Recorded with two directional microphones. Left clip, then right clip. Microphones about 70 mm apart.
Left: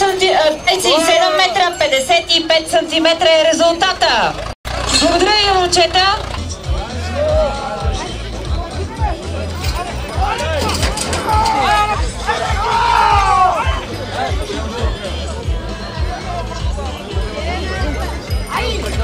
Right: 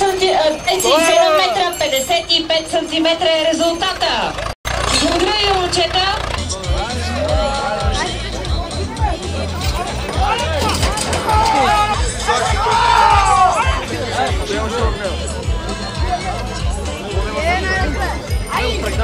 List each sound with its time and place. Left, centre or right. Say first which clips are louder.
0.0 s a sound: left 2 dB; left
7.2 s music: left 2 dB; right
10.5 s music: even; centre
12.4 s music: even; centre
14.1 s music: right 2 dB; right
17.4 s music: right 6 dB; right
18.5 s music: right 1 dB; centre